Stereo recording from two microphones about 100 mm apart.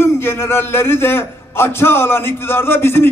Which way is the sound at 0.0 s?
25° left (ahead or behind).